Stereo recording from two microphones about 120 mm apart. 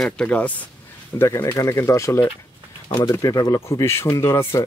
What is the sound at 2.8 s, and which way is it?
Speech, 35° left (ahead or behind).